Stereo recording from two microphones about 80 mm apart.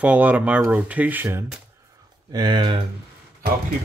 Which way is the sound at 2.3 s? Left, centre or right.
Right.